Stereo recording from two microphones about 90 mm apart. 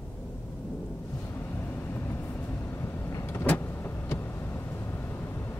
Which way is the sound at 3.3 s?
20° left (ahead or behind).